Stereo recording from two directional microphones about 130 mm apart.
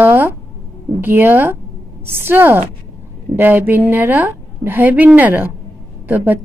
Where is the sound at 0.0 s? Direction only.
15° right (ahead or behind).